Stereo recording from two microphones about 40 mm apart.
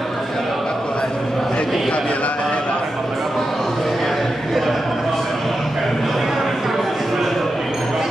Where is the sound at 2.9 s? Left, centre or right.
Centre.